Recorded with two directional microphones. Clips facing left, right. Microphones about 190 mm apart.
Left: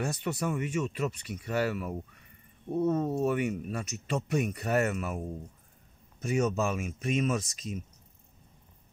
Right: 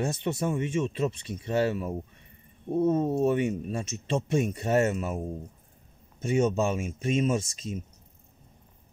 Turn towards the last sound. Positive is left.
turn(degrees=-30)  # may be behind; listen again after turning